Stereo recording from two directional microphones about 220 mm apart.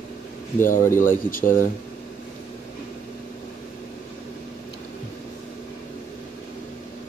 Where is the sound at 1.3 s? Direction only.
40° left (ahead or behind).